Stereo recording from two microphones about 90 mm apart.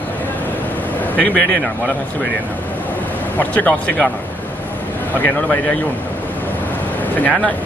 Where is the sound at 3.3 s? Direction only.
15° left (ahead or behind).